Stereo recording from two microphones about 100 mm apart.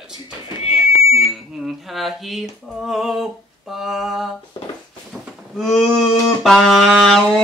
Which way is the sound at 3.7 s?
5° right (ahead or behind).